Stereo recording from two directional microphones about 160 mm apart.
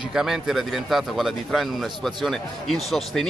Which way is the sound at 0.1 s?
5° right (ahead or behind).